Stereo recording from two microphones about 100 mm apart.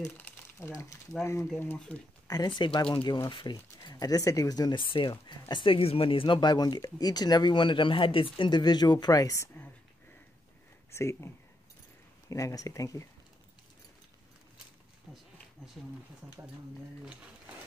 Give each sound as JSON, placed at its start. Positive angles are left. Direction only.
{"t": 0.7, "sound": "speech", "side_deg": 35}
{"t": 2.2, "sound": "speech", "side_deg": 45}
{"t": 3.5, "sound": "speech", "side_deg": 35}
{"t": 10.9, "sound": "speech", "side_deg": 25}
{"t": 15.8, "sound": "speech", "side_deg": 0}